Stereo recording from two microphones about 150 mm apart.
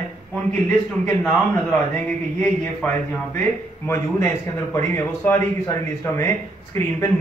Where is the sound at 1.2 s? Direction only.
5° left (ahead or behind).